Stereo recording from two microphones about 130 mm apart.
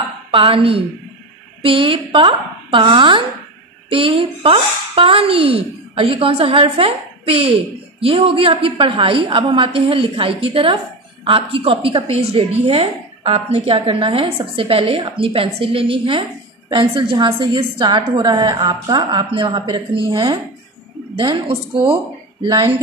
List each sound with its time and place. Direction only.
0.3 s a woman's voice: 45° right (ahead or behind)
21.3 s a woman's voice: 45° right (ahead or behind)